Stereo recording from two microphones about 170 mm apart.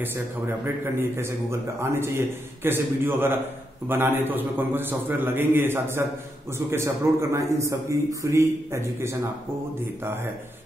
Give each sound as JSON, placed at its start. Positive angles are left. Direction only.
{"t": 0.9, "sound": "a man's voice", "side_deg": -15}